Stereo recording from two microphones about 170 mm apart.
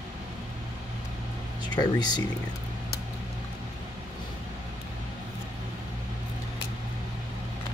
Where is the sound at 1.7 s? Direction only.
25° left (ahead or behind).